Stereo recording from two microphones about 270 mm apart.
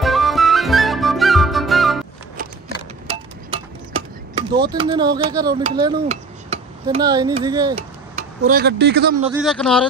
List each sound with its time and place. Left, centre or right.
0.0 s music: centre
4.4 s speech: centre
5.6 s a sound: centre
8.2 s speech: right
9.3 s speech: centre